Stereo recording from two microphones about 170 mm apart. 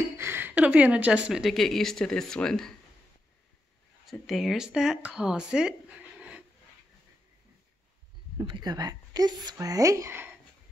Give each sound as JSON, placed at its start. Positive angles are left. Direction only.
{"t": 0.2, "sound": "speech", "side_deg": -15}
{"t": 4.0, "sound": "speech", "side_deg": 0}
{"t": 8.4, "sound": "a woman's voice", "side_deg": -25}